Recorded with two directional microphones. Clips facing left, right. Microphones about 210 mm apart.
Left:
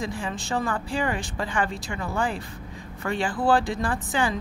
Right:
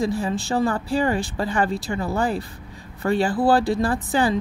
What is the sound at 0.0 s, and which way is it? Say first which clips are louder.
Speech: right 7 dB; 35° right (ahead or behind).